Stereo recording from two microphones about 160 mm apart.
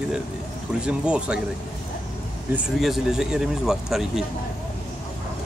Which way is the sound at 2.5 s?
Centre (ahead or behind).